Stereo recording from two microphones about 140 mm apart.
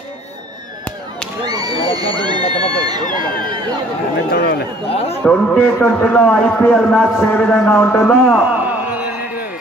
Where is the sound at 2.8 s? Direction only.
30° right (ahead or behind).